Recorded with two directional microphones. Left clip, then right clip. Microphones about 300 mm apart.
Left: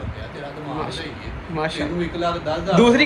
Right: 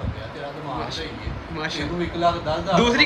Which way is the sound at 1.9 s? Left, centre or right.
Right.